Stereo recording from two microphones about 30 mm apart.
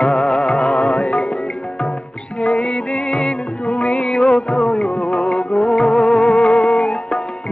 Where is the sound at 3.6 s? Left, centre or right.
Left.